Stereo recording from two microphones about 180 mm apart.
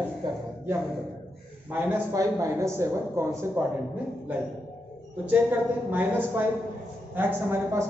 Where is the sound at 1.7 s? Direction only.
10° right (ahead or behind).